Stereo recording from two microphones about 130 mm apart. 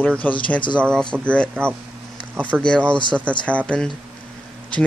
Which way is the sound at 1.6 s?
5° left (ahead or behind).